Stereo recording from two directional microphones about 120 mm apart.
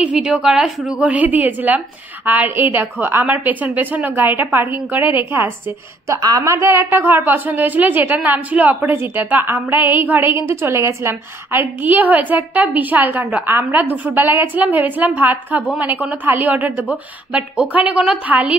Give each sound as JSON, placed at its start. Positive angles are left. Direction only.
{"t": 0.0, "sound": "a woman's voice", "side_deg": -10}
{"t": 6.1, "sound": "a woman's voice", "side_deg": -30}